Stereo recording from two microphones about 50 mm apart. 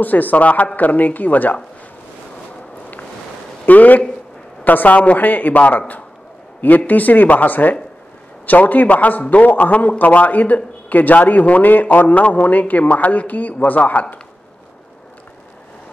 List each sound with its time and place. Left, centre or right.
0.0 s a man's voice: left
3.6 s a man's voice: left